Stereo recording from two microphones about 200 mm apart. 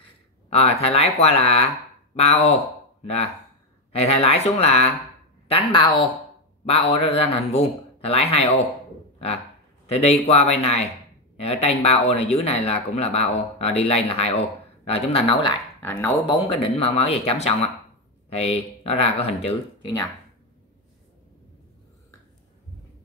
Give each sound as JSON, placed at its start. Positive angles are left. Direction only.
{"t": 0.5, "sound": "speech", "side_deg": 30}
{"t": 9.8, "sound": "speech", "side_deg": 30}
{"t": 15.8, "sound": "speech", "side_deg": 15}